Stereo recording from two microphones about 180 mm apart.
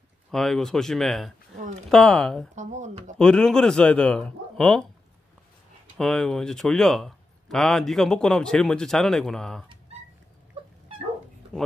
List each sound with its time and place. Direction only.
0.3 s a man's voice: centre (ahead or behind)
2.5 s speech: 40° right (ahead or behind)
3.2 s a man's voice: 5° left (ahead or behind)
5.9 s a man's voice: 5° left (ahead or behind)